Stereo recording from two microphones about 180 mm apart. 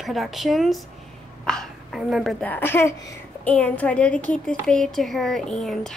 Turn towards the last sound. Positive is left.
turn(degrees=0)  # may be behind; listen again after turning